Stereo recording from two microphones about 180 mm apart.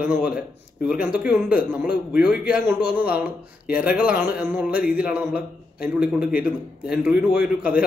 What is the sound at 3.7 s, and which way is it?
Speech, 10° right (ahead or behind).